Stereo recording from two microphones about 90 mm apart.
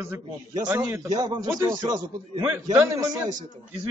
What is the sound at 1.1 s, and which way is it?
Speech, 50° right (ahead or behind).